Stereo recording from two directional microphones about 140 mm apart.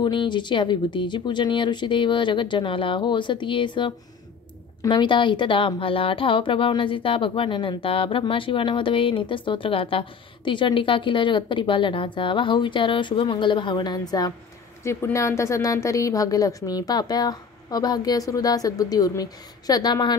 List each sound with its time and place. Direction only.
0.0 s a woman's voice: 35° left (ahead or behind)